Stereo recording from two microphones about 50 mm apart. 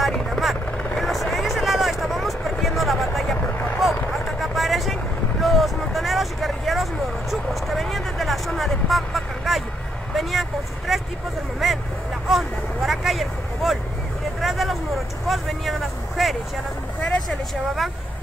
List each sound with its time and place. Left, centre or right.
0.0 s vehicle: centre
0.9 s helicopter: centre
2.6 s a sound: centre
3.8 s vehicle: centre
10.9 s vehicle: centre
17.0 s vehicle: left